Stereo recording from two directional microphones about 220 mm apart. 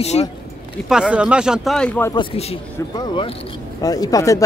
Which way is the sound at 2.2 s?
25° left (ahead or behind).